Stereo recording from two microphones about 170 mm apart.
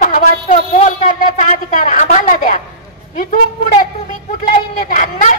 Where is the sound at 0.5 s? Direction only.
40° left (ahead or behind).